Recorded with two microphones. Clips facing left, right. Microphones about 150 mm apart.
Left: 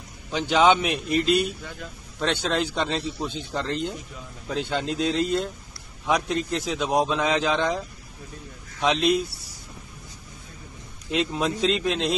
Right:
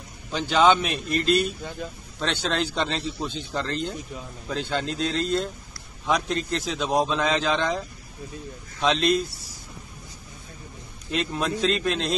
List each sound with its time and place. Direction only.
0.3 s a man's voice: 15° left (ahead or behind)
1.8 s speech: 20° right (ahead or behind)
2.4 s a man's voice: 5° left (ahead or behind)
8.8 s a man's voice: 10° left (ahead or behind)
11.1 s a man's voice: 15° left (ahead or behind)